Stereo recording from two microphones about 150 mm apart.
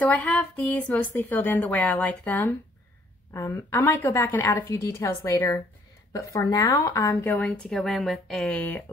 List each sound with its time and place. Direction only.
0.0 s a woman's voice: 10° left (ahead or behind)